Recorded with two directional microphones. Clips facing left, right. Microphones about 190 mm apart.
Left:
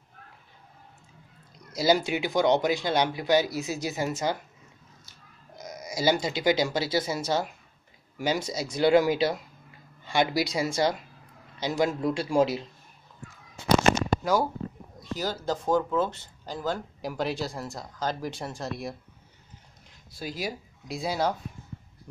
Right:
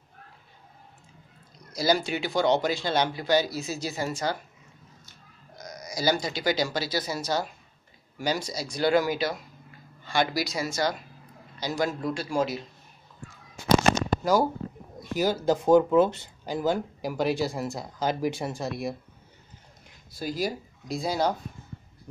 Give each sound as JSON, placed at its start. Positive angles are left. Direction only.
{"t": 1.7, "sound": "speech", "side_deg": 20}
{"t": 5.6, "sound": "speech", "side_deg": 25}
{"t": 15.1, "sound": "speech", "side_deg": -10}
{"t": 20.2, "sound": "speech", "side_deg": 0}